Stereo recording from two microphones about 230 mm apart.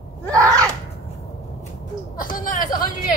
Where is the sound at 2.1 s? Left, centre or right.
Left.